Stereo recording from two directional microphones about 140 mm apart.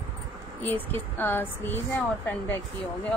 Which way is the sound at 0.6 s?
15° left (ahead or behind).